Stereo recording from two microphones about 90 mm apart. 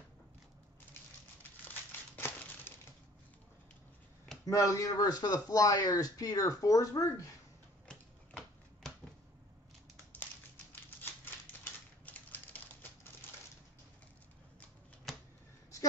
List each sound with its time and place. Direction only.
1.6 s crumpling: 20° left (ahead or behind)
4.5 s a man's voice: 35° left (ahead or behind)
7.9 s typewriter: 5° left (ahead or behind)
10.7 s typewriter: 20° left (ahead or behind)
15.1 s a sound: centre (ahead or behind)